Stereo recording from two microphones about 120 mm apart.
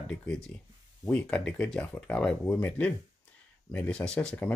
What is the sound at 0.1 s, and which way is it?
Speech, 10° left (ahead or behind).